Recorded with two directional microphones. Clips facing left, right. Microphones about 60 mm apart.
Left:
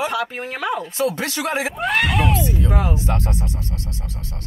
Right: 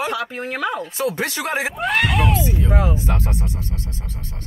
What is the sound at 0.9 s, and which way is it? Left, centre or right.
Speech, centre.